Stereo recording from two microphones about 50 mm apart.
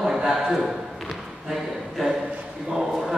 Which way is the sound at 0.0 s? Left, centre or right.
Centre.